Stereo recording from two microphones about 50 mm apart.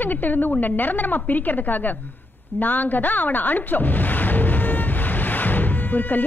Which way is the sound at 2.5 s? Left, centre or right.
Left.